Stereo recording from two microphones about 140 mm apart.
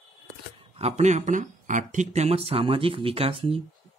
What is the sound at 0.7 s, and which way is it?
Speech, 50° right (ahead or behind).